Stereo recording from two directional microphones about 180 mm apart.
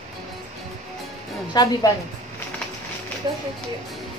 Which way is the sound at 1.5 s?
20° left (ahead or behind).